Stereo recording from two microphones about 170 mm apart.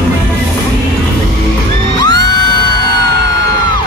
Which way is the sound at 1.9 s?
25° left (ahead or behind).